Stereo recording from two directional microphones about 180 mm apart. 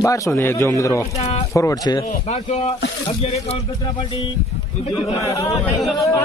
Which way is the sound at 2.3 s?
35° left (ahead or behind).